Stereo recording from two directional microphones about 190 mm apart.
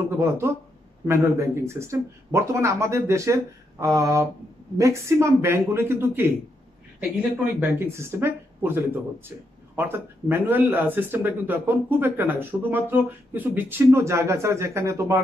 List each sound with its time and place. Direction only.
0.4 s speech: 10° right (ahead or behind)